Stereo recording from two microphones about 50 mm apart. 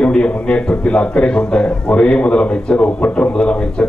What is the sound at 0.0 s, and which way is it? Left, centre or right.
A man's voice, left.